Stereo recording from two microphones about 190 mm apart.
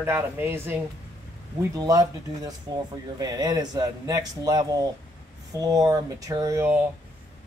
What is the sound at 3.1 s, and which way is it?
A man's voice, 20° right (ahead or behind).